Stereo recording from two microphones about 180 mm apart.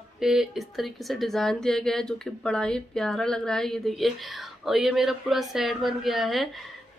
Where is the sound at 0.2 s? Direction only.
5° right (ahead or behind).